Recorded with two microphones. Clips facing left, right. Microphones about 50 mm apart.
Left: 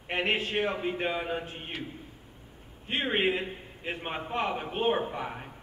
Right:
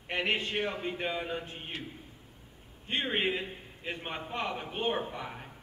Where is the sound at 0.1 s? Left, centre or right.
Centre.